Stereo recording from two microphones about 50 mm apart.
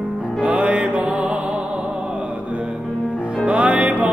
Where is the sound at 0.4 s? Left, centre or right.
Right.